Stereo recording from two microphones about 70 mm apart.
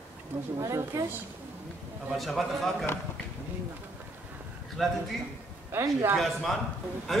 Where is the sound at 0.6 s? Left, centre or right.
Right.